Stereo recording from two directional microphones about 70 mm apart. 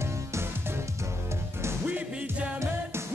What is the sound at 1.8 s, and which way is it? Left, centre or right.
Music, right.